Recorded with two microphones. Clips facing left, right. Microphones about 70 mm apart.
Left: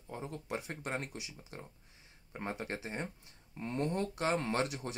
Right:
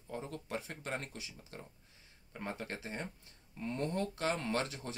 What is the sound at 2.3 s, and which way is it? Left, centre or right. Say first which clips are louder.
Speech: left 2 dB; left.